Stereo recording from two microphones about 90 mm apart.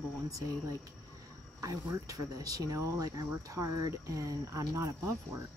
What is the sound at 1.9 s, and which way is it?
Speech, 40° right (ahead or behind).